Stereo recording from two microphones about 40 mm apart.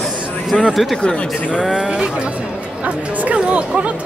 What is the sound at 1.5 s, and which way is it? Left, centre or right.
Speech, centre.